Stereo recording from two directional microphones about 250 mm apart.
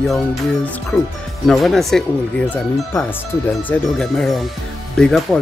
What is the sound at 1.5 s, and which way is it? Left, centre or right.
Speech, centre.